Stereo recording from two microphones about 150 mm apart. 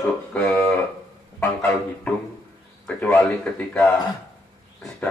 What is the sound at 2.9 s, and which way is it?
Speech, 10° left (ahead or behind).